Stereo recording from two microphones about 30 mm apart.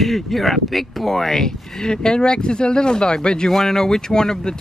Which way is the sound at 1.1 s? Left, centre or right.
Centre.